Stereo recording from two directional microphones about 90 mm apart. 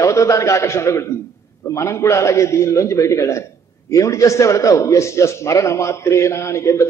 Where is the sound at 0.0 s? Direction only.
35° left (ahead or behind).